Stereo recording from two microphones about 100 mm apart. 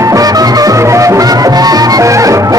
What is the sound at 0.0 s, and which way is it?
Music, 35° right (ahead or behind).